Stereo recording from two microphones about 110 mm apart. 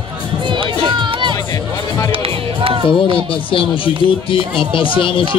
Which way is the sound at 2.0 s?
55° right (ahead or behind).